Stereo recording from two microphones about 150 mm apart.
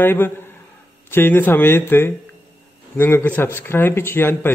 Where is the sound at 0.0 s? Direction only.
15° left (ahead or behind).